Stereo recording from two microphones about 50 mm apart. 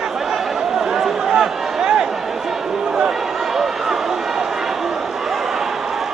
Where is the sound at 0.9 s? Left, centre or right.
Centre.